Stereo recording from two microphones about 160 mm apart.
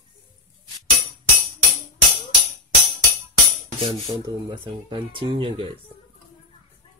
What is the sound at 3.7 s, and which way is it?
Speech, 30° right (ahead or behind).